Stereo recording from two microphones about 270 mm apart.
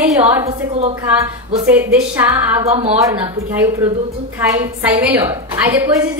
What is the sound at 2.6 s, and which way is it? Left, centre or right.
Speech, right.